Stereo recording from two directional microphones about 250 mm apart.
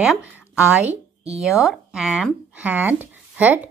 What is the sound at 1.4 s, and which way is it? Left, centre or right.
Speech, centre.